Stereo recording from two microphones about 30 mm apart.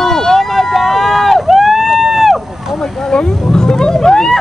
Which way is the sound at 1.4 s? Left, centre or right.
Centre.